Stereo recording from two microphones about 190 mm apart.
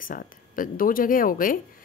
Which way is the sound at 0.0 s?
45° left (ahead or behind).